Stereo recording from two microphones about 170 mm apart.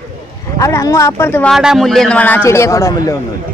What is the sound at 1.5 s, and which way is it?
A man's voice, centre (ahead or behind).